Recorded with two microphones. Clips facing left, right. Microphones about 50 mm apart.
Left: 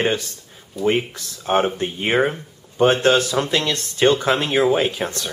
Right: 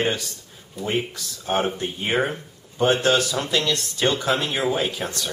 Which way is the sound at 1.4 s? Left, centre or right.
Left.